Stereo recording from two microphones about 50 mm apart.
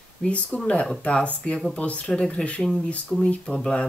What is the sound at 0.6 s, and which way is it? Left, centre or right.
Speech, left.